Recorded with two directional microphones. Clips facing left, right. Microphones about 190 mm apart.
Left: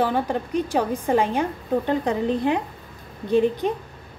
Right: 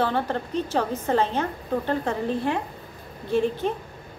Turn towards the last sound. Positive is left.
turn(degrees=15)  # may be behind; listen again after turning